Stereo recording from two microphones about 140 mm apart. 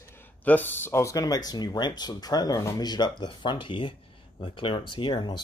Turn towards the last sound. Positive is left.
turn(degrees=30)  # may be behind; listen again after turning